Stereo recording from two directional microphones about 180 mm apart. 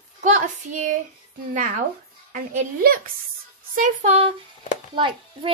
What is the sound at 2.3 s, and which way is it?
A child's voice, 55° right (ahead or behind).